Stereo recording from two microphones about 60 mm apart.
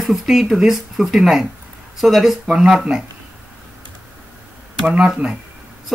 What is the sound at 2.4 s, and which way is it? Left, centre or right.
Speech, centre.